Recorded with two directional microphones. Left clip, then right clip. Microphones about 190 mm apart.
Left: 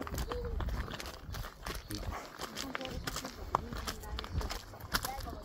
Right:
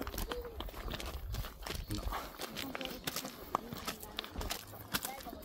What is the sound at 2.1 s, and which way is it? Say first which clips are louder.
Walk: right 2 dB; centre (ahead or behind).